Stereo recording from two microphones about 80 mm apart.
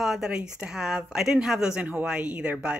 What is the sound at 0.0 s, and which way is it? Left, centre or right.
Speech, centre.